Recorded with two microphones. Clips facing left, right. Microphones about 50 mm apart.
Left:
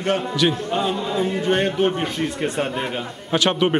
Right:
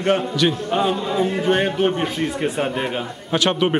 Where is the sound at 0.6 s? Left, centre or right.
Centre.